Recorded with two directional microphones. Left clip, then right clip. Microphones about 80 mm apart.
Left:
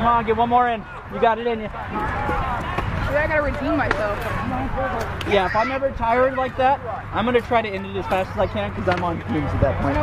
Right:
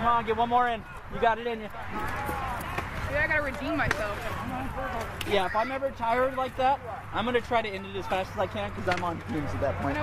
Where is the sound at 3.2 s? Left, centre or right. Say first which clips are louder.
Left 6 dB; right.